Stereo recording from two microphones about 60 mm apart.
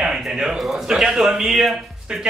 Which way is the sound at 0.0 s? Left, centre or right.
Centre.